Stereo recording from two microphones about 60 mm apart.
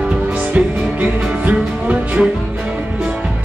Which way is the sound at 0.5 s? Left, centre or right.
Right.